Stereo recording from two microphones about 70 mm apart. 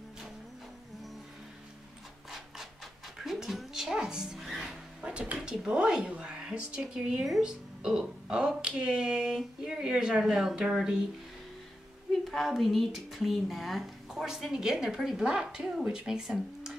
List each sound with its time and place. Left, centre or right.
2.3 s rub: centre
3.2 s dog: centre
5.0 s a sound: centre
5.3 s speech: centre
12.1 s a woman's voice: centre